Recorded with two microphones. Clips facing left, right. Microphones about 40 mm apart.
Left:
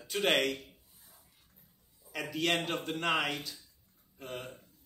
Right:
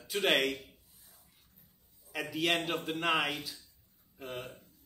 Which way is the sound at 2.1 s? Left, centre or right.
Centre.